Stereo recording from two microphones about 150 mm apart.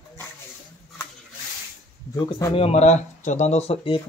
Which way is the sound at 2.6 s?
45° left (ahead or behind).